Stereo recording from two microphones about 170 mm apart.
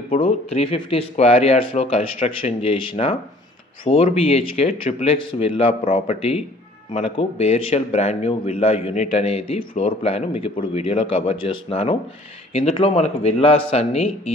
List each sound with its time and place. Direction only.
0.2 s a man's voice: 35° left (ahead or behind)